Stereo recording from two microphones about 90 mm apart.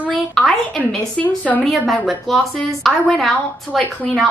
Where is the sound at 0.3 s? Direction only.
Centre (ahead or behind).